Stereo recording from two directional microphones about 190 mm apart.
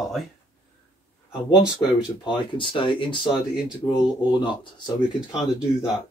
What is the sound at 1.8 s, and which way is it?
Speech, 25° left (ahead or behind).